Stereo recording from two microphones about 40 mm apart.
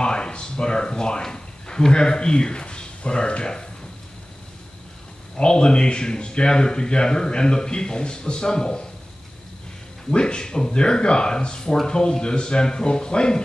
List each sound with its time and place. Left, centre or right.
0.0 s speech: left
5.4 s a man's voice: left
10.1 s a man's voice: left